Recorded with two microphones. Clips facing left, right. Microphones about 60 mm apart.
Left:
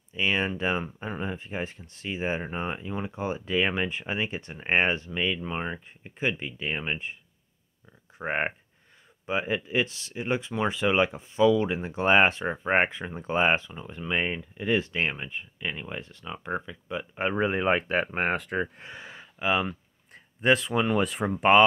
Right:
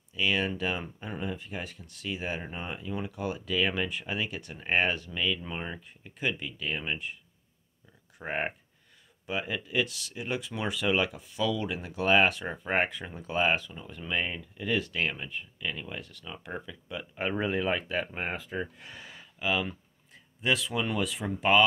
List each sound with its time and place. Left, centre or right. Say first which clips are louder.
0.1 s speech: left 2 dB; left
8.2 s speech: left 4 dB; left
17.6 s speech: left 5 dB; left
18.8 s a sound: left 4 dB; left
20.4 s speech: left 6 dB; left